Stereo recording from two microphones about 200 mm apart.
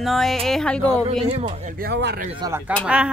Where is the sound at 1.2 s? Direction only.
30° right (ahead or behind).